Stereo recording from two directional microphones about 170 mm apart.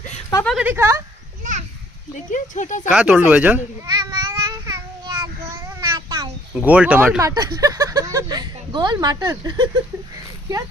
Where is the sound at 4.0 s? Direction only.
20° right (ahead or behind).